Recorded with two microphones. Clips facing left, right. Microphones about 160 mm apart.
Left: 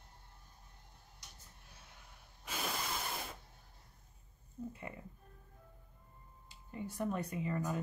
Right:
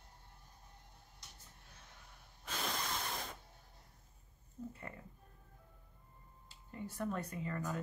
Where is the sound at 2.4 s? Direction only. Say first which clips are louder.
Left 1 dB; 10° left (ahead or behind).